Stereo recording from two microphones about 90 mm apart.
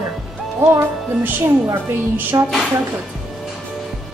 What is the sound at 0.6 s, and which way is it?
Speech, 30° right (ahead or behind).